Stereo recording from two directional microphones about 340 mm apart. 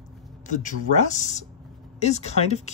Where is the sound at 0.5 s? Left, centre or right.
Left.